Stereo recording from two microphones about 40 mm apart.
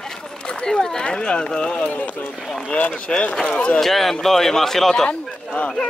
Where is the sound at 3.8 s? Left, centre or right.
Centre.